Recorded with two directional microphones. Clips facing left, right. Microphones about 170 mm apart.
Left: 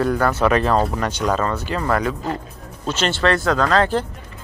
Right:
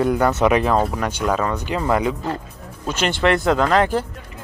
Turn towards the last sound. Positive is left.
turn(degrees=-15)  # may be behind; listen again after turning